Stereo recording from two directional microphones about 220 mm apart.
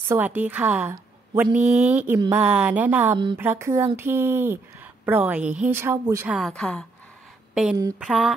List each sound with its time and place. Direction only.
0.1 s a woman's voice: 10° right (ahead or behind)
1.5 s speech: 35° right (ahead or behind)
1.9 s speech: 5° right (ahead or behind)
2.1 s speech: 20° right (ahead or behind)
2.4 s speech: 5° right (ahead or behind)
6.3 s a woman's voice: centre (ahead or behind)
8.0 s a woman's voice: centre (ahead or behind)